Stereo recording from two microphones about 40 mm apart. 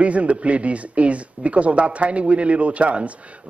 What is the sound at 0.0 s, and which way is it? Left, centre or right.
Speech, right.